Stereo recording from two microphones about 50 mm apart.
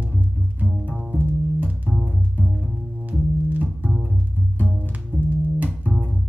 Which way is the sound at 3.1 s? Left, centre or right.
Right.